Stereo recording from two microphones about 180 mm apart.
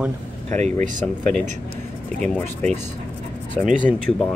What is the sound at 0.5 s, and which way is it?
Speech, 40° right (ahead or behind).